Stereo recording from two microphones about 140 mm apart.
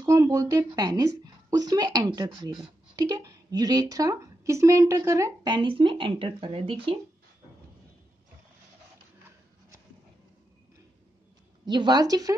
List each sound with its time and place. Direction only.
0.0 s a woman's voice: 25° right (ahead or behind); by 7.0 s 40° right (ahead or behind)
11.6 s a woman's voice: 30° right (ahead or behind)